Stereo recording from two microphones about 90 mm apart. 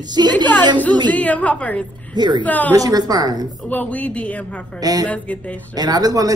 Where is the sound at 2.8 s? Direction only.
45° right (ahead or behind).